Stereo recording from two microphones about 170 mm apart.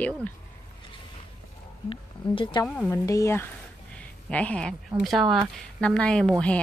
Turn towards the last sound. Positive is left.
turn(degrees=5)  # may be behind; listen again after turning